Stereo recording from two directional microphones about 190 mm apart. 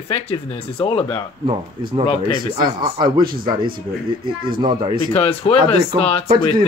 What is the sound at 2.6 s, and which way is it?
Speech, 20° right (ahead or behind).